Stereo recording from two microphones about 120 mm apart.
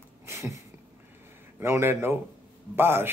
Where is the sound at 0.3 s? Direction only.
20° right (ahead or behind).